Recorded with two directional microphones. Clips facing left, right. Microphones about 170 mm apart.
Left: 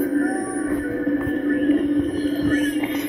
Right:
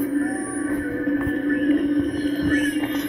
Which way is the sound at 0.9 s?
25° left (ahead or behind).